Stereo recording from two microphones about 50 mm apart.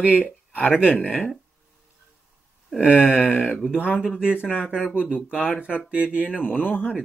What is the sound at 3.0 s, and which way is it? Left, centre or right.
Speech, left.